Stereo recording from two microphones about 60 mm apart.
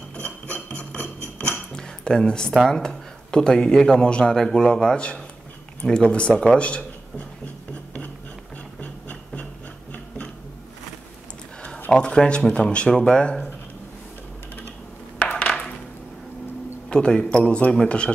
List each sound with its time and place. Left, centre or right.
0.1 s a sound: left
2.6 s a man's voice: centre
8.8 s music: left
11.9 s speech: centre
15.1 s a sound: left
16.9 s speech: centre